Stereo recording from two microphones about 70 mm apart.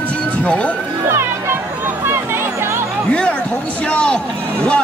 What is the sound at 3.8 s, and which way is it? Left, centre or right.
Speech, centre.